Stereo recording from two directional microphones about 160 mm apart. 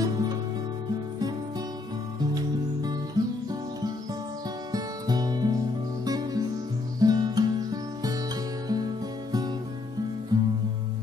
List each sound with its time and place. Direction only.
0.0 s music: 25° right (ahead or behind)
4.7 s music: 25° right (ahead or behind)